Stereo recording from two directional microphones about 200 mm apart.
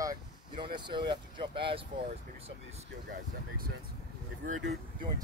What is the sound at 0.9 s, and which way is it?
Speech, 25° right (ahead or behind).